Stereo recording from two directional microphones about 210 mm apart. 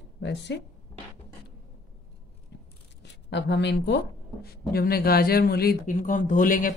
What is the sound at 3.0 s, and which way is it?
Speech, 55° left (ahead or behind).